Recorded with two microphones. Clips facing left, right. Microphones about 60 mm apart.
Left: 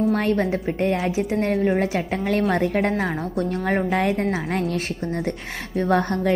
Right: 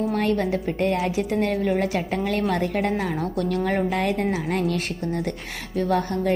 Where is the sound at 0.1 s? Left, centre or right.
Left.